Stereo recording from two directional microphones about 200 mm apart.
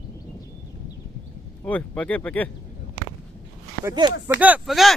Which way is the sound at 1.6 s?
10° left (ahead or behind).